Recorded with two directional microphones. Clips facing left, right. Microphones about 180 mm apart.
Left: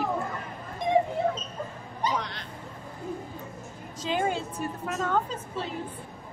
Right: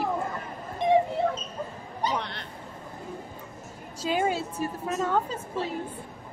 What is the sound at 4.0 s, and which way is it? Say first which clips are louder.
Speech: right 2 dB; 10° right (ahead or behind).